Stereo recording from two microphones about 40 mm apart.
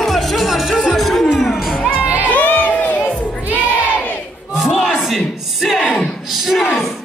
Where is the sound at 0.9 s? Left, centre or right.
Centre.